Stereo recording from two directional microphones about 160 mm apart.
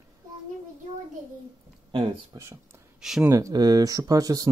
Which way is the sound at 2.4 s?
15° right (ahead or behind).